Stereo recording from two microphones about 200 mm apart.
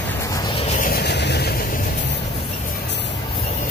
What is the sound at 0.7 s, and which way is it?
Vehicle, 45° left (ahead or behind).